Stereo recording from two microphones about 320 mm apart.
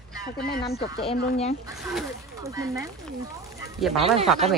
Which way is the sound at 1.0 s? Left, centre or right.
Centre.